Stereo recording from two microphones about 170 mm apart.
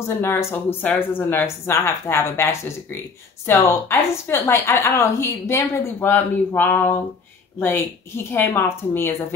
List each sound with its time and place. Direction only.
0.0 s a woman's voice: 15° left (ahead or behind)